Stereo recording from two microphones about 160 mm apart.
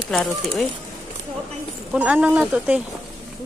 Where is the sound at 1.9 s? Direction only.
5° right (ahead or behind).